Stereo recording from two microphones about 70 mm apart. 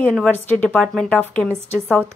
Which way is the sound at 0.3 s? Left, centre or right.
Left.